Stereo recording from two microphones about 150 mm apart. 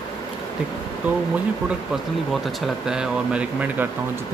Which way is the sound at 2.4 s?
Centre (ahead or behind).